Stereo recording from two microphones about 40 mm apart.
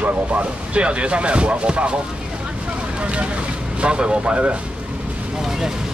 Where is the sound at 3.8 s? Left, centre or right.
Right.